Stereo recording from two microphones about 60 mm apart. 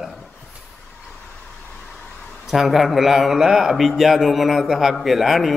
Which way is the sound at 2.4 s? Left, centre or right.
Centre.